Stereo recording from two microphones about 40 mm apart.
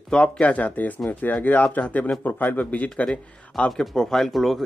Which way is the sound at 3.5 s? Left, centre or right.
Centre.